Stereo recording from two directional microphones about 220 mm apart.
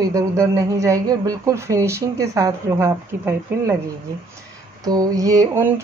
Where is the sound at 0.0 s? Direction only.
15° right (ahead or behind).